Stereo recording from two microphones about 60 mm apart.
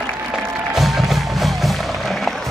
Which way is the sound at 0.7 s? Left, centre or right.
Centre.